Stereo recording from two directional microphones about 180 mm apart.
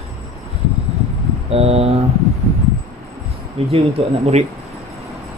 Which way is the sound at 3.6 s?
35° right (ahead or behind).